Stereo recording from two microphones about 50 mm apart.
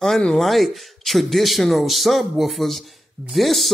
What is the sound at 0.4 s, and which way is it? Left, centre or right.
A man's voice, centre.